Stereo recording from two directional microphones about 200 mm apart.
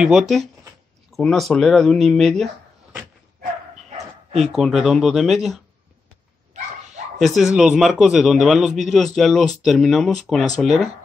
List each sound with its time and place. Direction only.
0.0 s speech: 5° right (ahead or behind)
4.5 s speech: centre (ahead or behind)
7.2 s speech: centre (ahead or behind)